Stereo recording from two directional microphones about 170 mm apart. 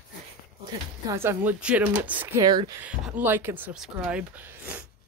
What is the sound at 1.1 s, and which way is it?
Speech, 15° right (ahead or behind).